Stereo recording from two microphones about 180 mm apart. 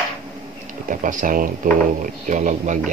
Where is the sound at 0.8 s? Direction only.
45° right (ahead or behind).